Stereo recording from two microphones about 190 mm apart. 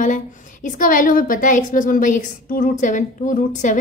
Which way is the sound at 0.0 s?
40° left (ahead or behind).